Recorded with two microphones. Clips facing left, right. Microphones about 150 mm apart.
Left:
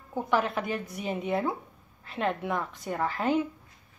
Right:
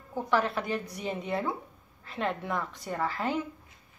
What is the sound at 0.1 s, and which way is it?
Speech, 15° left (ahead or behind).